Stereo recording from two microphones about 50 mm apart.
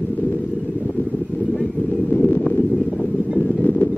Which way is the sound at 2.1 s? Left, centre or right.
Left.